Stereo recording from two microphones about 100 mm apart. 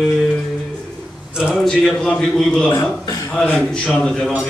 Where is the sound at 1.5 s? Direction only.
Centre (ahead or behind).